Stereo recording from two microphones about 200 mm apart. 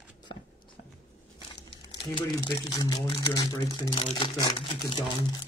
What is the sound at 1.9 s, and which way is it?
Speech, 20° left (ahead or behind).